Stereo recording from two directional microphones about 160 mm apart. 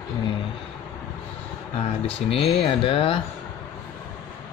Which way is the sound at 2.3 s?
35° left (ahead or behind).